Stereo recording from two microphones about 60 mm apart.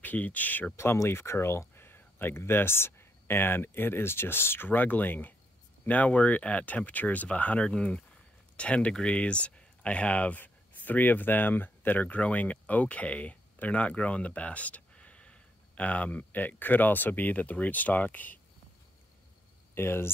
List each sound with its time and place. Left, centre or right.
0.0 s speech: left
0.7 s speech: left
4.6 s speech: left
19.7 s speech: left